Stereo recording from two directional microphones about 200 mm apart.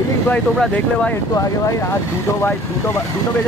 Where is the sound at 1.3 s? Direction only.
15° left (ahead or behind).